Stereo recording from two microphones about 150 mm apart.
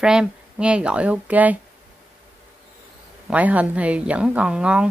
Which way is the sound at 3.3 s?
10° right (ahead or behind).